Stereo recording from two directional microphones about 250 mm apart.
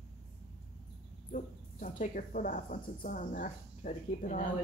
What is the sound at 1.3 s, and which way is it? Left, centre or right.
Speech, left.